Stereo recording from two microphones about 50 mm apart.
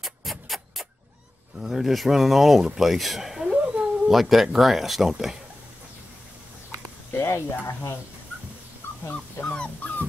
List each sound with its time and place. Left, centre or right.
0.0 s music: centre
1.6 s speech: centre
3.6 s cat: right
4.1 s speech: centre
7.1 s speech: left
8.8 s dog: left
9.5 s dog: left